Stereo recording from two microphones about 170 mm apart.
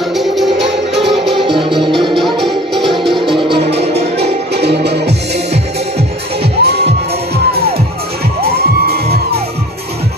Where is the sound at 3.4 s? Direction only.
30° right (ahead or behind).